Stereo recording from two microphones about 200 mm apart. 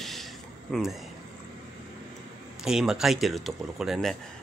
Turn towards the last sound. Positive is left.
turn(degrees=0)  # may be behind; listen again after turning